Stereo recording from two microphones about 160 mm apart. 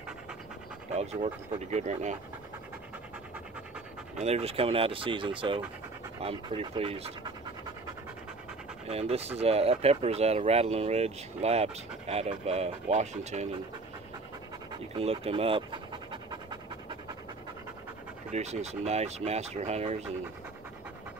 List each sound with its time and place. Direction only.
0.9 s speech: 45° right (ahead or behind)
4.2 s speech: 40° right (ahead or behind)
8.8 s speech: 40° right (ahead or behind)
15.0 s pant: 40° right (ahead or behind)
18.3 s speech: 45° right (ahead or behind)